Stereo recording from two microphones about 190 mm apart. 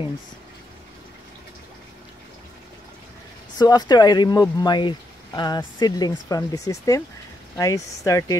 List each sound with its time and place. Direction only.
3.5 s speech: 20° left (ahead or behind)